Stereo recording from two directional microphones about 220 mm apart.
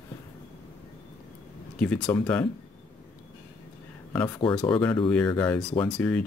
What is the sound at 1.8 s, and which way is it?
Speech, 5° left (ahead or behind).